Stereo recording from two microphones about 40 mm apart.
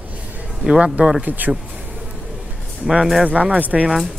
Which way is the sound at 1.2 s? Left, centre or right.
Right.